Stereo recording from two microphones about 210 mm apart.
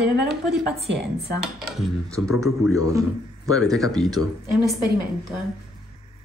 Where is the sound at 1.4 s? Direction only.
Centre (ahead or behind).